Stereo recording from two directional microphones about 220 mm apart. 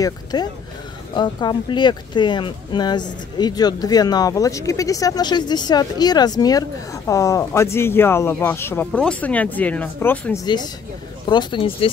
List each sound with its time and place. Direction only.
0.0 s speech: 20° left (ahead or behind)
11.2 s speech: 20° left (ahead or behind)